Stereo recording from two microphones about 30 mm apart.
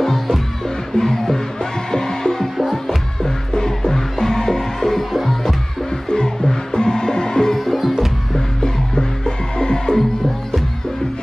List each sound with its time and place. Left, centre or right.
0.9 s music: centre
5.9 s music: left
7.5 s music: centre
8.4 s music: centre